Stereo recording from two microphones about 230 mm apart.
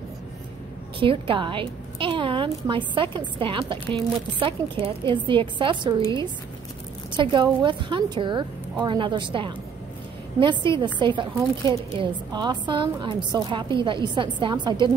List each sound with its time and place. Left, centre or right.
0.9 s a woman's voice: right
7.2 s a woman's voice: centre